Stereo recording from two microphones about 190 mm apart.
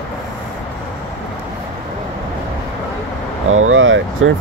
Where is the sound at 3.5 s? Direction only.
90° right.